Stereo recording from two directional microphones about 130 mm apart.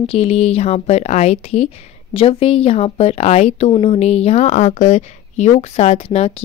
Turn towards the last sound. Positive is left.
turn(degrees=50)  # may be behind; listen again after turning